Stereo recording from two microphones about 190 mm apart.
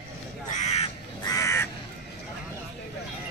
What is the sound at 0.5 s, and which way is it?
Speech, 35° left (ahead or behind).